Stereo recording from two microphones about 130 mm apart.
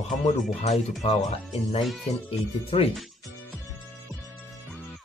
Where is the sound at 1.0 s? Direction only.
50° left (ahead or behind).